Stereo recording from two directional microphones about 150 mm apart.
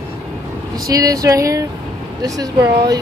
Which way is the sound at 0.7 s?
25° right (ahead or behind).